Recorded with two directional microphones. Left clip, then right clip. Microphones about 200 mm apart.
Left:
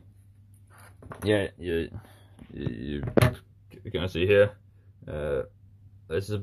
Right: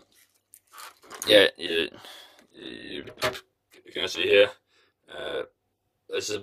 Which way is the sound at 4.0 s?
10° right (ahead or behind).